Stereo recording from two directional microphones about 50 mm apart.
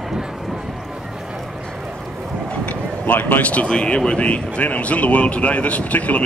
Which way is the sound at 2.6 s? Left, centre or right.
Left.